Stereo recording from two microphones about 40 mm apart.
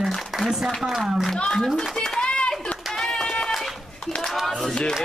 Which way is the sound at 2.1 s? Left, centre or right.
Left.